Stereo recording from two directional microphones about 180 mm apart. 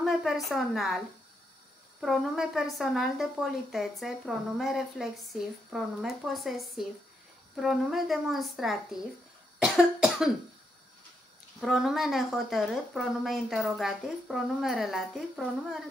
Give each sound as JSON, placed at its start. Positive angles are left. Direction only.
{"t": 0.0, "sound": "a woman's voice", "side_deg": 0}
{"t": 9.6, "sound": "cough", "side_deg": 0}
{"t": 11.6, "sound": "a woman's voice", "side_deg": 0}